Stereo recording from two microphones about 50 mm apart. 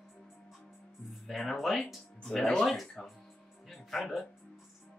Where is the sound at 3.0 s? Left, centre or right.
Centre.